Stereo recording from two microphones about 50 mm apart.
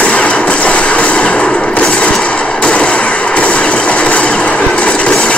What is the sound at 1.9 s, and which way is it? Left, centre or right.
Train, left.